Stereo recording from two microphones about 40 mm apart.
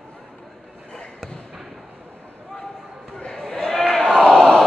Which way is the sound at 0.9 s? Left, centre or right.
Centre.